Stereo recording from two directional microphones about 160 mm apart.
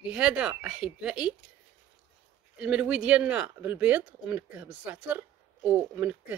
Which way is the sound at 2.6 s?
10° right (ahead or behind).